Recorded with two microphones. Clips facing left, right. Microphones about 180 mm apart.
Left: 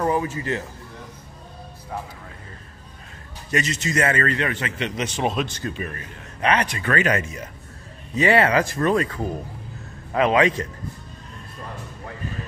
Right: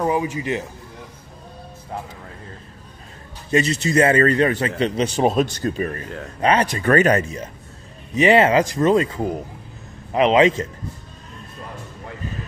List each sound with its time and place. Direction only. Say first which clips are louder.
0.0 s speech: right 2 dB; 15° right (ahead or behind)
3.5 s a man's voice: right 6 dB; 35° right (ahead or behind)
8.1 s a man's voice: right 4 dB; 20° right (ahead or behind)